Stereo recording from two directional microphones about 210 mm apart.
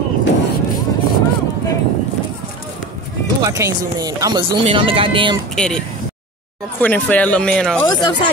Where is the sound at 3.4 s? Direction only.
15° right (ahead or behind).